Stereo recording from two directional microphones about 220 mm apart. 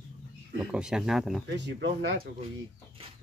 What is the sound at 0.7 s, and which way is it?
Speech, 5° right (ahead or behind).